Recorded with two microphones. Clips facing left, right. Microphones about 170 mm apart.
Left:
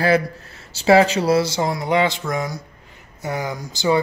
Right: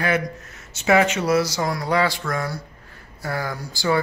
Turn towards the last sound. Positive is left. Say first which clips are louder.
# left 3 dB
turn(degrees=20)  # may be behind; listen again after turning